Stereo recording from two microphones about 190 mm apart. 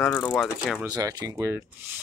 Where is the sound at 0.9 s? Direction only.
20° right (ahead or behind).